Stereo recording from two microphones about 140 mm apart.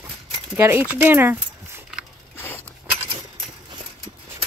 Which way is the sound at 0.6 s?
15° right (ahead or behind).